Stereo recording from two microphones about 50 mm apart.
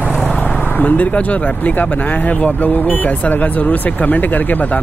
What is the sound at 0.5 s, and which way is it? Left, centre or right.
Speech, left.